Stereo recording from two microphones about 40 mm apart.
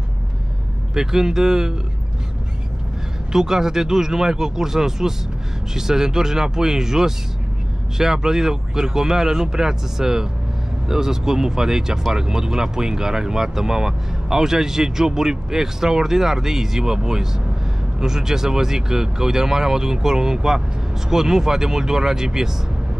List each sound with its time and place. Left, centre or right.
0.9 s speech: centre
3.3 s speech: centre